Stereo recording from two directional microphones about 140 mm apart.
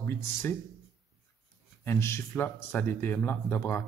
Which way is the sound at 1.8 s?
20° left (ahead or behind).